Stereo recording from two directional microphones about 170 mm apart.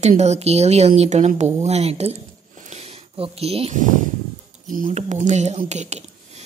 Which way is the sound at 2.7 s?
35° right (ahead or behind).